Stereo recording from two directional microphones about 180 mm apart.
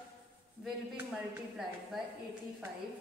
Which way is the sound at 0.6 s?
10° right (ahead or behind).